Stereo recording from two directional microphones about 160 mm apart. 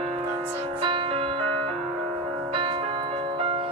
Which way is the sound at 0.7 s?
35° right (ahead or behind).